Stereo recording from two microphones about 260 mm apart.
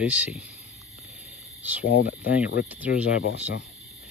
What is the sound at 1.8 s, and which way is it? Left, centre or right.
Speech, left.